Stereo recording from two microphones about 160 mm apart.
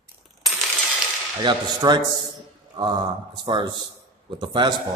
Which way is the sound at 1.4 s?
30° right (ahead or behind).